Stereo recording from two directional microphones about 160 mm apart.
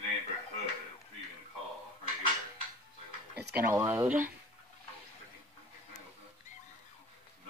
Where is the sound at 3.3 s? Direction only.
90° right.